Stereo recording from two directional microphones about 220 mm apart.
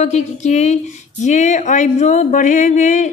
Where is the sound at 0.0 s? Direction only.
30° left (ahead or behind).